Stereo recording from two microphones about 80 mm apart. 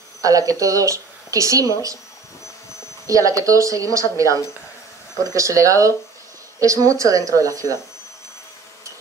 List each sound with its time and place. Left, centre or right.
0.2 s speech: right
3.1 s speech: right